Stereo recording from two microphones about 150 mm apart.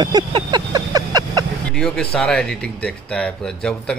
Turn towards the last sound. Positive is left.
turn(degrees=5)  # may be behind; listen again after turning